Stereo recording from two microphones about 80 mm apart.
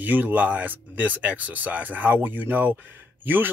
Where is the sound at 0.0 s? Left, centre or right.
Right.